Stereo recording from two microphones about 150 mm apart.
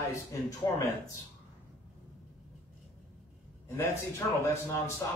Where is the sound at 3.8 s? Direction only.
15° left (ahead or behind).